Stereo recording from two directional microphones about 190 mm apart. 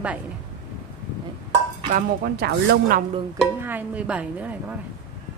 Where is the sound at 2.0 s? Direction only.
55° right (ahead or behind).